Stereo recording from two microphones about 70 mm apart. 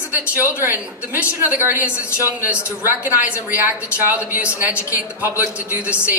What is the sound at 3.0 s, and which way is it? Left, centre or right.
A woman's voice, right.